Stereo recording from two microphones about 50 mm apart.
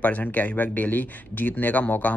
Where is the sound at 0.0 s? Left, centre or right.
Left.